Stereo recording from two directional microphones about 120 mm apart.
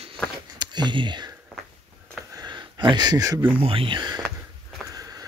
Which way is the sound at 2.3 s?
35° right (ahead or behind).